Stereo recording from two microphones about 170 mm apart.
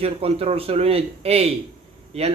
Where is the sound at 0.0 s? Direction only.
35° right (ahead or behind).